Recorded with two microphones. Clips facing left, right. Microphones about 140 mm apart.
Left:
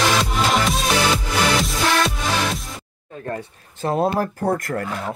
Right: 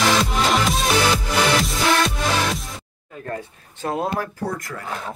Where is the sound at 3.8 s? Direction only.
30° left (ahead or behind).